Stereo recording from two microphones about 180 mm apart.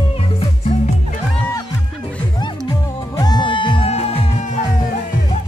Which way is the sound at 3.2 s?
25° left (ahead or behind).